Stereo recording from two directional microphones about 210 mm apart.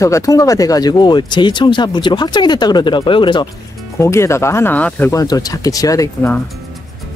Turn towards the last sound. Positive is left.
turn(degrees=15)  # may be behind; listen again after turning